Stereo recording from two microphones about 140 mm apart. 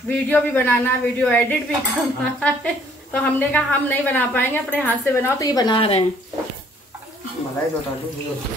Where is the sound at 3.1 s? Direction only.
10° left (ahead or behind); by 6.0 s 40° left (ahead or behind).